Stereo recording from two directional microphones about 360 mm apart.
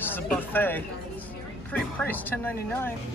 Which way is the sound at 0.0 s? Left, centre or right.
Centre.